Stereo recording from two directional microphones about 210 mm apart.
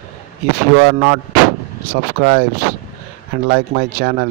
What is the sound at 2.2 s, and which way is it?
Speech, 45° right (ahead or behind).